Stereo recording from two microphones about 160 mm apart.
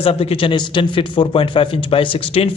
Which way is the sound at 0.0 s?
35° left (ahead or behind).